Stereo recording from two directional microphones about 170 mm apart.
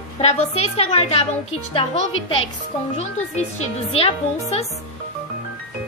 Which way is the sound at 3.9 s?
35° left (ahead or behind).